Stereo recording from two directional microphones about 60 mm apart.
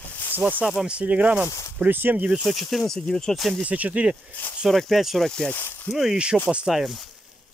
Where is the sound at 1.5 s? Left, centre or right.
Left.